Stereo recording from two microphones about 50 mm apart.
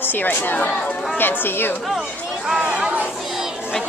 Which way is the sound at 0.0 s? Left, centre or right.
Left.